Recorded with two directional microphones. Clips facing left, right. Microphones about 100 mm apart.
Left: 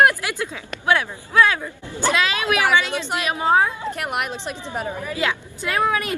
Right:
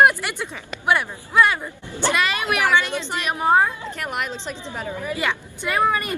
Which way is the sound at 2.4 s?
15° left (ahead or behind).